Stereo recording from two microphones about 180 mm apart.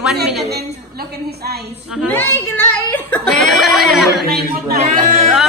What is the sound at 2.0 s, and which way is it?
Speech, 10° left (ahead or behind).